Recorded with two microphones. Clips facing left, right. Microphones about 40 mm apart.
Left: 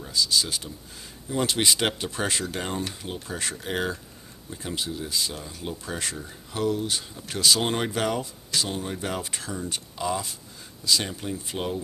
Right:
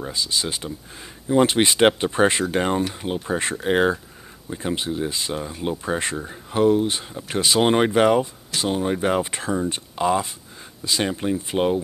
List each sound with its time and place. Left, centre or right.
0.0 s speech: right